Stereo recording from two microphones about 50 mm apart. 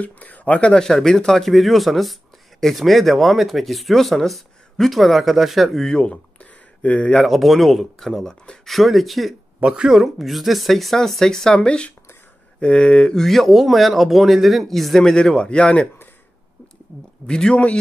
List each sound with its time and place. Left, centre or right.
0.0 s speech: left
0.7 s speech: centre
5.9 s speech: centre
7.2 s speech: centre
9.6 s speech: centre
9.9 s speech: centre
13.2 s speech: centre
15.0 s speech: centre
17.3 s speech: centre